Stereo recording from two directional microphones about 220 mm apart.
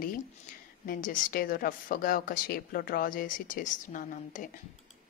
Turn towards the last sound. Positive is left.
turn(degrees=35)  # may be behind; listen again after turning